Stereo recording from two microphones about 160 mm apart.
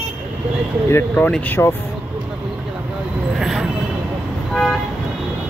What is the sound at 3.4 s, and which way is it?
Vehicle, 5° right (ahead or behind).